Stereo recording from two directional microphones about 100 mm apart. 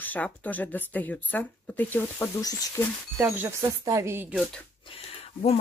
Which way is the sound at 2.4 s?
35° left (ahead or behind).